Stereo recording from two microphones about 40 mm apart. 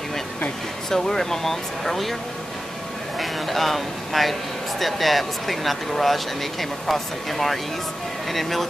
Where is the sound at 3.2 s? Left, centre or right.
Centre.